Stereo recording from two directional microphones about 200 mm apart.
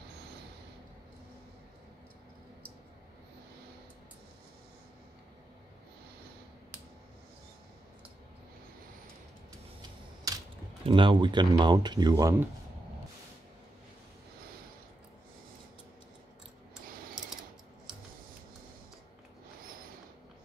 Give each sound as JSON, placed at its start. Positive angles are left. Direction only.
{"t": 9.8, "sound": "typing", "side_deg": -20}
{"t": 10.9, "sound": "speech", "side_deg": -25}